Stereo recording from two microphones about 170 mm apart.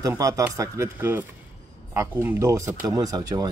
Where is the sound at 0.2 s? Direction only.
20° right (ahead or behind).